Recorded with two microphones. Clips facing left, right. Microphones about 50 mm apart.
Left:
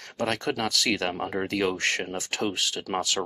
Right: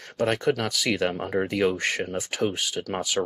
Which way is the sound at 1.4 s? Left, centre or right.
Centre.